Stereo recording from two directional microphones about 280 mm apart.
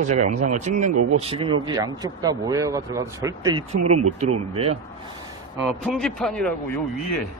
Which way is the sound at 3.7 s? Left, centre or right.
Right.